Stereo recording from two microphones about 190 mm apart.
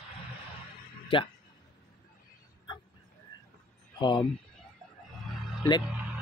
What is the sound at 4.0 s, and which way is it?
Speech, 25° left (ahead or behind).